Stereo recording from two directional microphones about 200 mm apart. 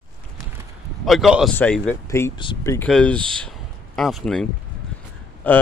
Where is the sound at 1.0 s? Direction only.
Centre (ahead or behind).